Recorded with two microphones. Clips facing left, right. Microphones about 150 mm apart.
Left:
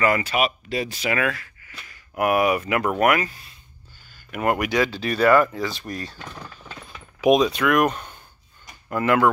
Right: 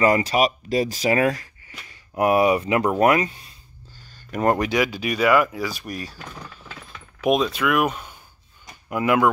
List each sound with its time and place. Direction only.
0.0 s speech: 35° right (ahead or behind)
4.1 s a sound: 35° right (ahead or behind)
4.6 s speech: 15° right (ahead or behind)
6.4 s mechanisms: centre (ahead or behind)
8.8 s speech: 10° right (ahead or behind)